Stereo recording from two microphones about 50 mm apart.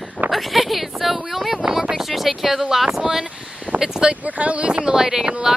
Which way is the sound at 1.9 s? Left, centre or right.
Centre.